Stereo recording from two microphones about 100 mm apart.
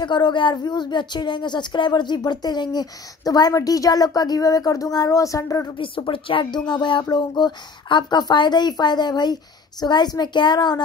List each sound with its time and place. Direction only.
0.0 s speech: 50° left (ahead or behind); by 5.7 s 35° left (ahead or behind)
5.8 s speech: 60° left (ahead or behind)